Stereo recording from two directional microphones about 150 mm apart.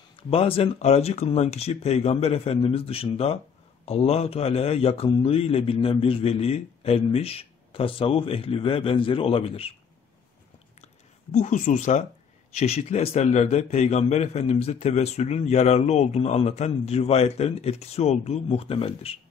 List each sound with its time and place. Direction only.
0.3 s a man's voice: 40° left (ahead or behind)
11.3 s speech: 55° left (ahead or behind)
12.5 s a man's voice: 45° left (ahead or behind)